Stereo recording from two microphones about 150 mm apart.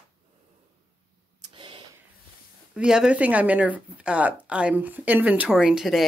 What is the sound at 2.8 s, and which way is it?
Speech, 5° right (ahead or behind).